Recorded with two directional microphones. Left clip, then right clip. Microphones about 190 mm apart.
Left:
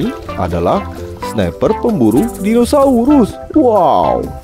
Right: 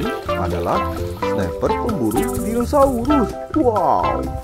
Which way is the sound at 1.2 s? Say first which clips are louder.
Left 5 dB; 40° left (ahead or behind).